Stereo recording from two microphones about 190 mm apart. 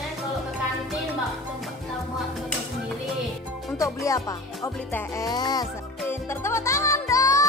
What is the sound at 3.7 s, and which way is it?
Speech, 15° left (ahead or behind).